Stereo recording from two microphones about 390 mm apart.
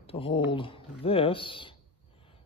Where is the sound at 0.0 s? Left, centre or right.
Centre.